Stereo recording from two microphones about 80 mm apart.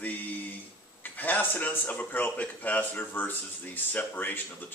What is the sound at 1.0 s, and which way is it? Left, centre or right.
Speech, left.